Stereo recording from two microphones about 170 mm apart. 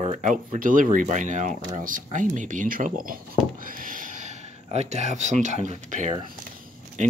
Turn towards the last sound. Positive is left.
turn(degrees=-45)  # may be behind; listen again after turning